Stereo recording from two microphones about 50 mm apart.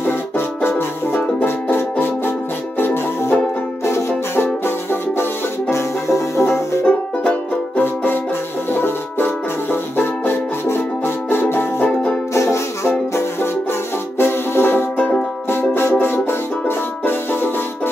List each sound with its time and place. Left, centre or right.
0.6 s music: left
3.8 s music: left
5.7 s music: left
6.8 s music: left
7.8 s music: left
11.4 s music: left
14.1 s music: left
15.0 s music: left
15.5 s music: left